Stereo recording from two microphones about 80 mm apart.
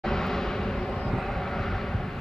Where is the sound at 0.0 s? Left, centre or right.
Centre.